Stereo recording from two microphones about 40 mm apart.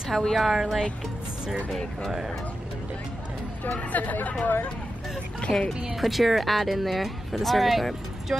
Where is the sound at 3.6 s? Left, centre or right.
Left.